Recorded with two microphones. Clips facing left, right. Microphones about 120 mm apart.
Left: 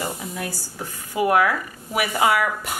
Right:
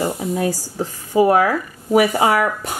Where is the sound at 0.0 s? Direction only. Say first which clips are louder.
Right 9 dB; 30° right (ahead or behind).